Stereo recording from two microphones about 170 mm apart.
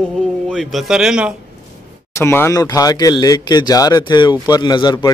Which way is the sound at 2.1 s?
15° left (ahead or behind).